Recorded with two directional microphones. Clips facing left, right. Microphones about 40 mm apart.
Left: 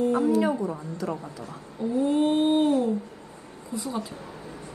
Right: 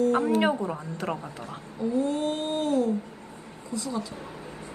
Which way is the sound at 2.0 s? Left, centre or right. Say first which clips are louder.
Left 6 dB; left.